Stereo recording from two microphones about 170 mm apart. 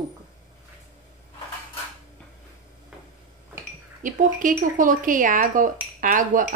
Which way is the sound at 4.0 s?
50° right (ahead or behind).